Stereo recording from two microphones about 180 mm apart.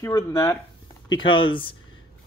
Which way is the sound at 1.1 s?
25° left (ahead or behind).